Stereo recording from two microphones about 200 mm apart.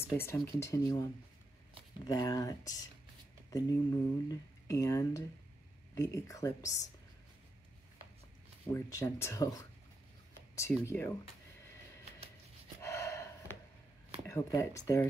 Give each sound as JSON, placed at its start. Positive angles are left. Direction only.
{"t": 0.1, "sound": "speech", "side_deg": 10}
{"t": 2.0, "sound": "speech", "side_deg": 20}
{"t": 8.7, "sound": "speech", "side_deg": 15}
{"t": 10.9, "sound": "speech", "side_deg": 15}
{"t": 12.8, "sound": "snort", "side_deg": 15}
{"t": 14.2, "sound": "speech", "side_deg": 15}